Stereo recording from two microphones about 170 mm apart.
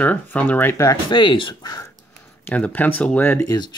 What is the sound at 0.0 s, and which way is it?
Speech, 10° left (ahead or behind).